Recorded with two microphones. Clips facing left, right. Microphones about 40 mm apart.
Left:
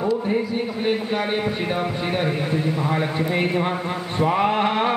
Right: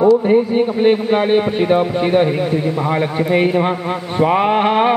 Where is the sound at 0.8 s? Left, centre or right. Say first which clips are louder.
Right 8 dB; right.